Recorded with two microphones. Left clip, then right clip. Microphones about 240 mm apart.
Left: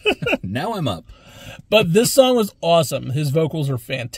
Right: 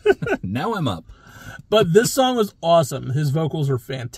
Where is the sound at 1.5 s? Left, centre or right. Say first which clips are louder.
Left 1 dB; centre.